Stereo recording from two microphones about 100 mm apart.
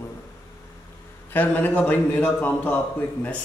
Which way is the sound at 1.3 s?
15° left (ahead or behind).